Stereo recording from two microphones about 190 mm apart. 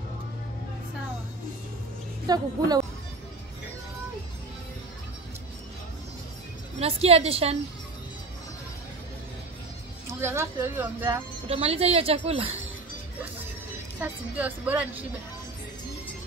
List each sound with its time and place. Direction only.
2.2 s a woman's voice: 20° right (ahead or behind)
6.8 s speech: 30° right (ahead or behind)
10.0 s speech: 15° right (ahead or behind)
11.4 s speech: 30° right (ahead or behind)
13.9 s speech: 10° right (ahead or behind)